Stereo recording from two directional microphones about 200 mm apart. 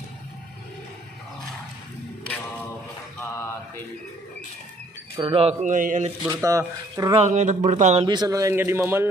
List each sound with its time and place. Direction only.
3.2 s mantra: 10° left (ahead or behind)
5.1 s speech: 25° right (ahead or behind)
6.2 s speech: 15° right (ahead or behind)
7.2 s speech: 35° right (ahead or behind)
8.1 s speech: 20° right (ahead or behind)